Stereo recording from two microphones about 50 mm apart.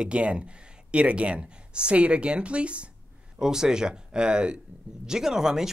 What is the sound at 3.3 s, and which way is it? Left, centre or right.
Speech, centre.